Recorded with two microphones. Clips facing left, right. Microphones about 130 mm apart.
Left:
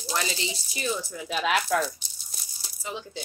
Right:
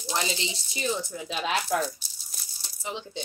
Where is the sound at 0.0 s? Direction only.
20° right (ahead or behind).